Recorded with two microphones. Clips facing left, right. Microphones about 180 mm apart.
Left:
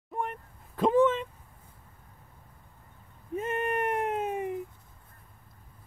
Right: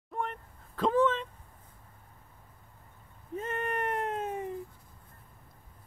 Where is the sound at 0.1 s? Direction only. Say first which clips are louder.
Left 2 dB; 10° left (ahead or behind).